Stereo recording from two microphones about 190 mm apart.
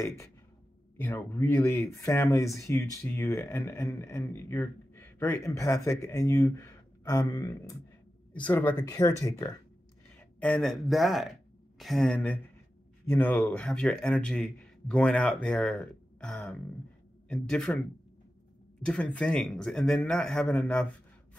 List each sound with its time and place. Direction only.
0.9 s speech: 10° left (ahead or behind)
8.3 s speech: 10° left (ahead or behind)
10.1 s speech: 5° left (ahead or behind)
18.8 s speech: 5° left (ahead or behind)